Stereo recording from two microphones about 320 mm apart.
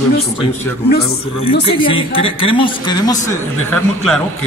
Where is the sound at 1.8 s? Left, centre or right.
Centre.